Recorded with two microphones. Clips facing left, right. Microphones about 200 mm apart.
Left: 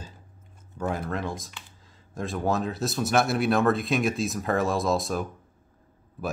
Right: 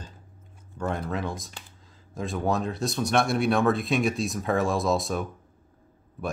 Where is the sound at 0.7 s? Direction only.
5° left (ahead or behind).